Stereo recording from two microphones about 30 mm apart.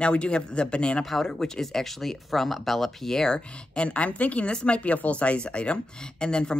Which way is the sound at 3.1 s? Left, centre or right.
Centre.